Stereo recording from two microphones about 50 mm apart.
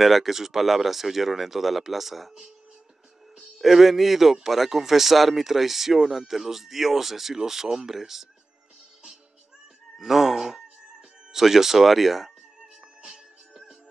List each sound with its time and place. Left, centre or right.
0.0 s a man's voice: centre
3.3 s music: centre
3.6 s a man's voice: centre
9.9 s music: centre
11.3 s a man's voice: centre
13.0 s music: centre